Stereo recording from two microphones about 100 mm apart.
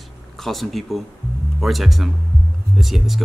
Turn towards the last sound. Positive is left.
turn(degrees=0)  # may be behind; listen again after turning